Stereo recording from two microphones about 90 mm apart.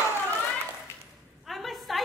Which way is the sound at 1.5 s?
Centre (ahead or behind).